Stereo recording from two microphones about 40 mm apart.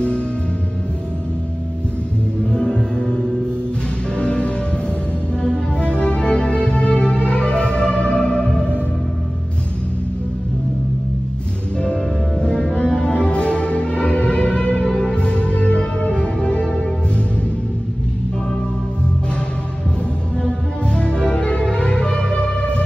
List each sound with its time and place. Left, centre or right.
2.4 s music: left
11.8 s music: left
20.4 s music: left